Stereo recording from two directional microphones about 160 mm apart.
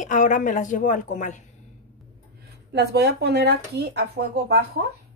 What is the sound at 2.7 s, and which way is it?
Speech, 90° right.